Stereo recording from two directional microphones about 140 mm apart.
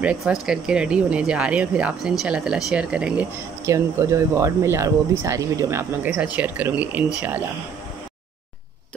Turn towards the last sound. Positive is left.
turn(degrees=-10)  # may be behind; listen again after turning